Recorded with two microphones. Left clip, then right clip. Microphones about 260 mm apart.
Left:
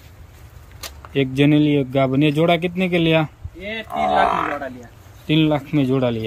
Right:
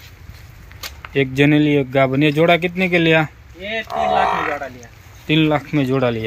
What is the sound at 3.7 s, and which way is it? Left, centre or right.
Speech, right.